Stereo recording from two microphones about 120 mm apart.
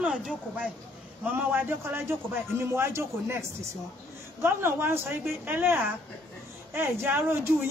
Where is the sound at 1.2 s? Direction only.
15° right (ahead or behind).